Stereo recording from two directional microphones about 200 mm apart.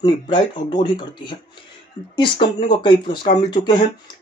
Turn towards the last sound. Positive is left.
turn(degrees=20)  # may be behind; listen again after turning